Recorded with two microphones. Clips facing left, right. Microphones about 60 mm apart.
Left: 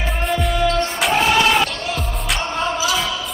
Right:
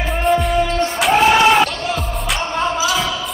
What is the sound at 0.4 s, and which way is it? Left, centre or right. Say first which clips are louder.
Music: right 2 dB; centre.